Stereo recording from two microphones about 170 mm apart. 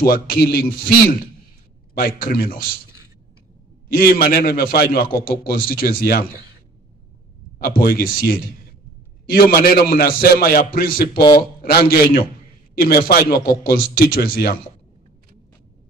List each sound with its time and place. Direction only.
0.0 s a man's voice: 55° left (ahead or behind)
2.0 s a man's voice: 55° left (ahead or behind)
3.9 s a man's voice: 55° left (ahead or behind)
7.5 s a man's voice: 55° left (ahead or behind)